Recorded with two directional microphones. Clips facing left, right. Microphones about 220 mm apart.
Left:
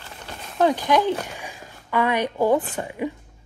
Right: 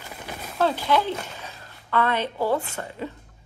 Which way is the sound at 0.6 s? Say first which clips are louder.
Left 3 dB; 15° left (ahead or behind).